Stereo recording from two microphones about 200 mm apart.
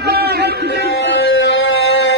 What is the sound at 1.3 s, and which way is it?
Music, 70° left (ahead or behind).